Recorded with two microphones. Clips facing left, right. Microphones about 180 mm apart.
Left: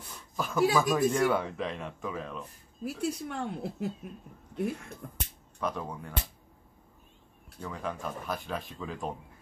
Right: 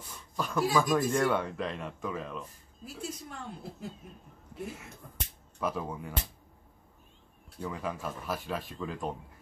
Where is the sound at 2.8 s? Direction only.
70° left (ahead or behind).